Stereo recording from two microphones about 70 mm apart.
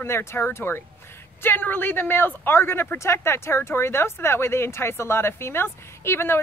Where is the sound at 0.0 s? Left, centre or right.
Left.